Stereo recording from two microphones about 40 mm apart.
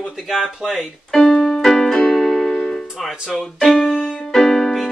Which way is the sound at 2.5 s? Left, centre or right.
Left.